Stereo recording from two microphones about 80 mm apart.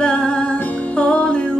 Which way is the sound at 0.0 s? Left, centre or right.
Centre.